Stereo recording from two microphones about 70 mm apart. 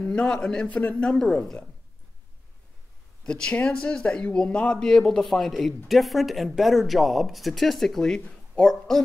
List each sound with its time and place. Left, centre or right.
0.0 s a man's voice: centre
0.7 s a man's voice: left
1.1 s speech: centre
3.3 s a man's voice: centre